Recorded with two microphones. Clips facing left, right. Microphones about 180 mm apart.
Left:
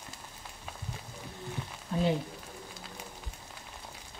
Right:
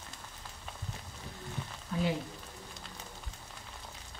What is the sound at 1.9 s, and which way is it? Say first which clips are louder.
Speech: left 3 dB; 25° left (ahead or behind).